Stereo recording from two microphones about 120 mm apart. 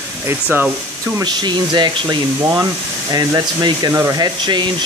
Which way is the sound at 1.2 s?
40° right (ahead or behind).